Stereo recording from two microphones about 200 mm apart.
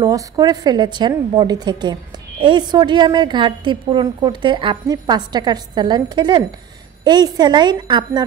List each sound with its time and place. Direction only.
0.0 s a woman's voice: 20° right (ahead or behind)